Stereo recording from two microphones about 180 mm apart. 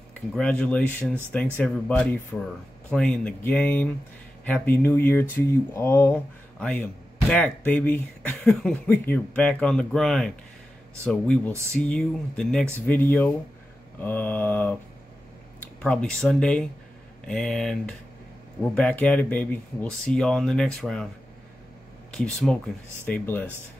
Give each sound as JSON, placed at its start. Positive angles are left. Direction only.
{"t": 0.3, "sound": "speech", "side_deg": 5}
{"t": 15.8, "sound": "speech", "side_deg": 5}
{"t": 22.1, "sound": "speech", "side_deg": 5}